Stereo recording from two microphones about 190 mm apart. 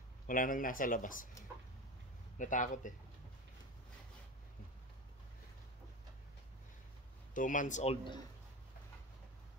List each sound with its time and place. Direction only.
0.3 s speech: 45° left (ahead or behind)
2.3 s speech: 40° left (ahead or behind)
7.3 s speech: 45° left (ahead or behind)